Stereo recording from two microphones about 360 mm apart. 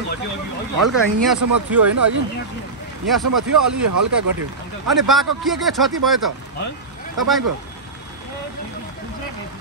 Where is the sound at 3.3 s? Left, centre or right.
Right.